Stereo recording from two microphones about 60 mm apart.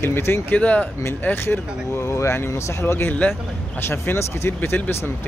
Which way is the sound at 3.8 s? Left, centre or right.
Left.